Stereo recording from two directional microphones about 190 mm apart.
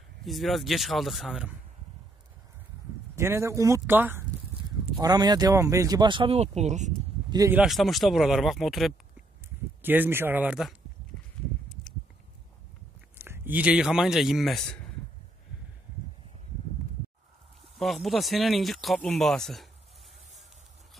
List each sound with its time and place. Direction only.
0.2 s speech: centre (ahead or behind)
3.2 s speech: 15° right (ahead or behind); by 6.9 s 35° right (ahead or behind)
7.2 s speech: 20° right (ahead or behind)
7.5 s speech: centre (ahead or behind)
13.2 s speech: 10° right (ahead or behind)
17.7 s speech: centre (ahead or behind)